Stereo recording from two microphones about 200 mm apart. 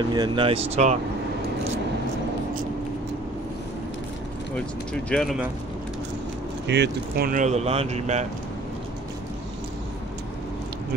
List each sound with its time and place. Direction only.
0.1 s speech: 20° right (ahead or behind)
0.8 s speech: 35° right (ahead or behind)
5.1 s speech: centre (ahead or behind)
6.7 s speech: 55° right (ahead or behind); by 8.3 s 35° right (ahead or behind)